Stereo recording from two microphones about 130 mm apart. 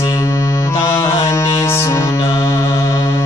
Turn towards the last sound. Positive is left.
turn(degrees=20)  # may be behind; listen again after turning